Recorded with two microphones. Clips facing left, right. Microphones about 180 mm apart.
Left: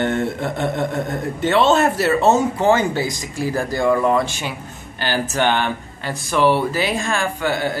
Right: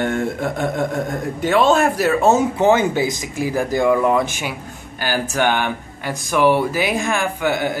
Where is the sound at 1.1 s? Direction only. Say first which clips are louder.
Even; 10° right (ahead or behind).